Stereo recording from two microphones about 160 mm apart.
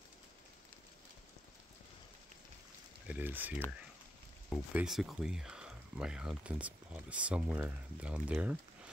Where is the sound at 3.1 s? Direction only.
10° right (ahead or behind).